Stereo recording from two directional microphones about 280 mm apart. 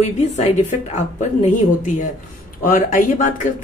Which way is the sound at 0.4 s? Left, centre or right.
Left.